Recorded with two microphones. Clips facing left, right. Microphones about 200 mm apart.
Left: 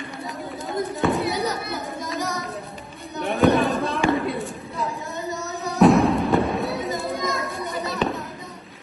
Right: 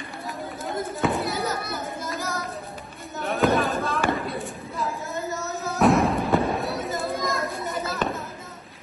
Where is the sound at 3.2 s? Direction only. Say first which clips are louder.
Left 4 dB; centre (ahead or behind).